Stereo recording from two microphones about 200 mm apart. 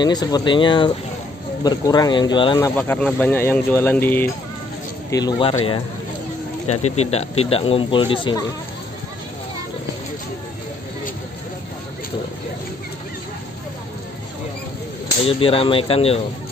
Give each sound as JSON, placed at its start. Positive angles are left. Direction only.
{"t": 0.0, "sound": "speech", "side_deg": 20}
{"t": 2.7, "sound": "speech", "side_deg": 5}
{"t": 5.1, "sound": "speech", "side_deg": 25}
{"t": 6.7, "sound": "speech", "side_deg": 30}
{"t": 15.2, "sound": "speech", "side_deg": 30}